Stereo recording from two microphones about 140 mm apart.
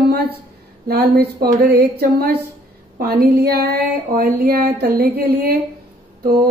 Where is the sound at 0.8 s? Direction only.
90° right.